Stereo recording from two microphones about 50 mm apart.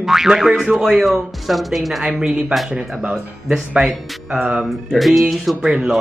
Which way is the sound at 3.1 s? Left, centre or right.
Centre.